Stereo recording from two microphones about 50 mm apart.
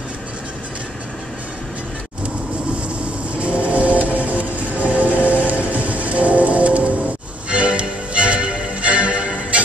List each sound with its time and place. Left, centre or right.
3.3 s music: right